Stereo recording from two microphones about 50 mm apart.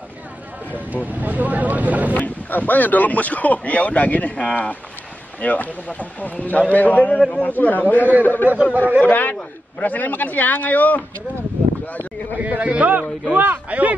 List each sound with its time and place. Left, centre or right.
1.1 s speech: right
2.1 s speech: left
8.7 s speech: right
9.0 s speech: left
12.4 s a man's voice: right